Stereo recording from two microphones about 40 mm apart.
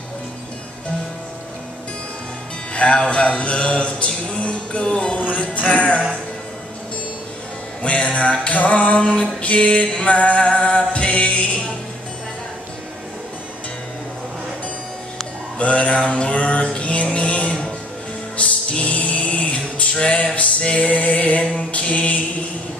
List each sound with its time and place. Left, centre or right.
2.7 s mantra: left
5.3 s speech: left
7.8 s speech: left
8.5 s mantra: left
10.0 s music: left
15.6 s speech: left
16.1 s music: left